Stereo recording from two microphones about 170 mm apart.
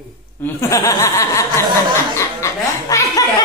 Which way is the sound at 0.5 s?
20° left (ahead or behind).